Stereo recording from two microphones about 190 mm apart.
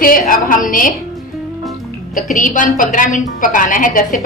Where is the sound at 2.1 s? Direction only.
45° left (ahead or behind).